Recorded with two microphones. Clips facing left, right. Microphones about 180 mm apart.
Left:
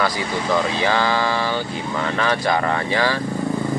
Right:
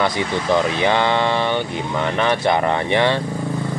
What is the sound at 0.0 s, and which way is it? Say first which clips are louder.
Speech: right 2 dB; 25° right (ahead or behind).